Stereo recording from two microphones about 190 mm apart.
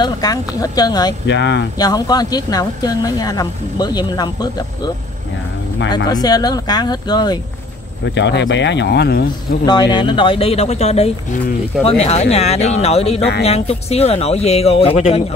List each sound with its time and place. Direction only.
0.0 s speech: 20° left (ahead or behind)
1.2 s speech: 70° left (ahead or behind)
1.8 s speech: 20° left (ahead or behind)
6.0 s speech: 20° left (ahead or behind)
8.0 s speech: 70° left (ahead or behind)
9.7 s speech: 20° left (ahead or behind)